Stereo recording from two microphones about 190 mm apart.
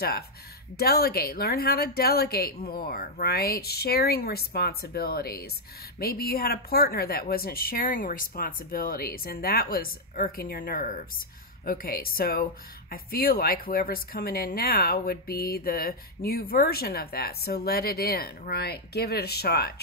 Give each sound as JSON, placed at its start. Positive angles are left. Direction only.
{"t": 0.7, "sound": "speech", "side_deg": 55}